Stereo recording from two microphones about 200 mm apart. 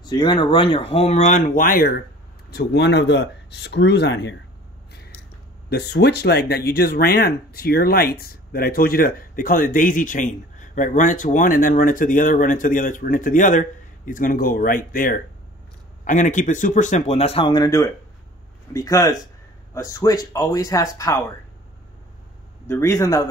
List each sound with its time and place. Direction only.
0.0 s speech: 20° left (ahead or behind); by 2.0 s 50° left (ahead or behind)
2.5 s speech: 60° left (ahead or behind)
5.7 s speech: 55° left (ahead or behind); by 21.2 s 15° left (ahead or behind)
22.7 s speech: 15° left (ahead or behind)